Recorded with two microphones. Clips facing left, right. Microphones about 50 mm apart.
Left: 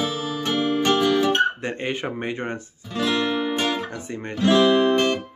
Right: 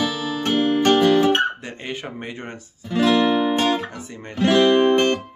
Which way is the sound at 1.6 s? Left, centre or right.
Left.